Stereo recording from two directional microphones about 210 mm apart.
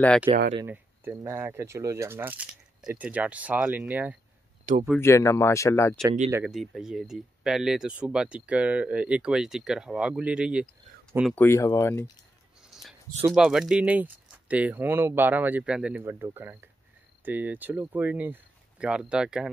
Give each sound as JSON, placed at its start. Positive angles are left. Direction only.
{"t": 0.6, "sound": "speech", "side_deg": -10}
{"t": 4.7, "sound": "speech", "side_deg": -35}
{"t": 5.0, "sound": "speech", "side_deg": 15}
{"t": 6.3, "sound": "speech", "side_deg": 0}
{"t": 11.3, "sound": "speech", "side_deg": 10}
{"t": 12.6, "sound": "speech", "side_deg": 0}